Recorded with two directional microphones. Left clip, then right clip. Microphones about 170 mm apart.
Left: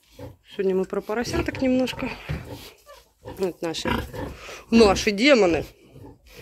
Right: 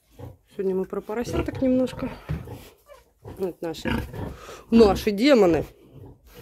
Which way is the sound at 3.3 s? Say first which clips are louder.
Left 3 dB; 5° right (ahead or behind).